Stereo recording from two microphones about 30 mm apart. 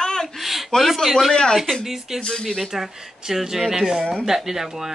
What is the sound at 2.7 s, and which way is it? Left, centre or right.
A woman's voice, centre.